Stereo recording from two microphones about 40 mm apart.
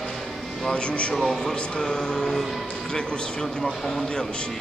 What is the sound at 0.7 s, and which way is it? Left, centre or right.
Speech, left.